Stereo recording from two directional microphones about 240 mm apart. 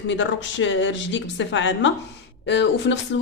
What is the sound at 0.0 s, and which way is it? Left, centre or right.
Speech, left.